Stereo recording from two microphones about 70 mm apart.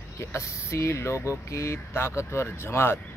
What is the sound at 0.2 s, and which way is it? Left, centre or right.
Speech, left.